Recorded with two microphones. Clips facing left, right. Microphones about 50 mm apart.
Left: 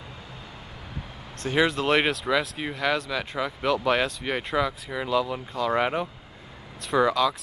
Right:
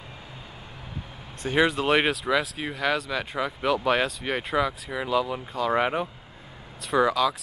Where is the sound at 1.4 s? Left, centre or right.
Centre.